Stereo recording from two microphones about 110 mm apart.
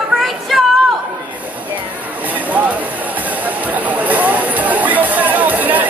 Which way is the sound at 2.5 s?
15° right (ahead or behind).